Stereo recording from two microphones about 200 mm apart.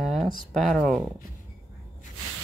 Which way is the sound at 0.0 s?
Centre (ahead or behind).